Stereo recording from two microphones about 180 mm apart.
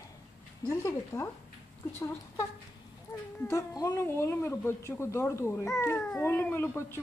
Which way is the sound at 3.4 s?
15° left (ahead or behind).